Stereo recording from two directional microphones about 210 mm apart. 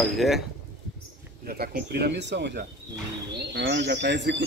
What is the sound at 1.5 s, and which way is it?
Speech, 45° right (ahead or behind).